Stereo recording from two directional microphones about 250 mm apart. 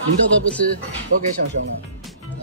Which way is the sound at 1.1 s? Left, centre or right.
Right.